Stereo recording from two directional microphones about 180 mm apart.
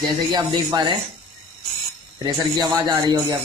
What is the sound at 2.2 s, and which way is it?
Speech, 20° right (ahead or behind).